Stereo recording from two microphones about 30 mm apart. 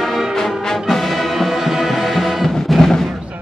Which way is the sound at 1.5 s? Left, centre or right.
Centre.